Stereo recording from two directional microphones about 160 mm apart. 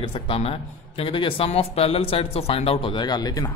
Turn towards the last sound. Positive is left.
turn(degrees=25)  # may be behind; listen again after turning